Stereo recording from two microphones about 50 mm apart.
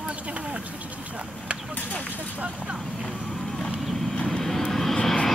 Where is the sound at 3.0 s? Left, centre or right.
Centre.